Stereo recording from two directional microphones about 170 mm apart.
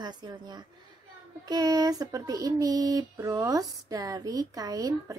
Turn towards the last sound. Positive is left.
turn(degrees=-20)  # may be behind; listen again after turning